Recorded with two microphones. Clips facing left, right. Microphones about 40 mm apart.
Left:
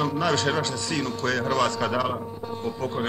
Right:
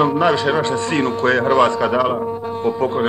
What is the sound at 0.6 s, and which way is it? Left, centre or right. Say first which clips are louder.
A man's voice: right 9 dB; right.